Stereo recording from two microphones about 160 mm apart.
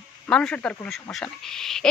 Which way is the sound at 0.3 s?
5° left (ahead or behind).